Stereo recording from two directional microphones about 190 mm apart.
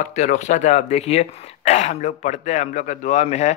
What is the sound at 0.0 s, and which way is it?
A man's voice, 40° left (ahead or behind).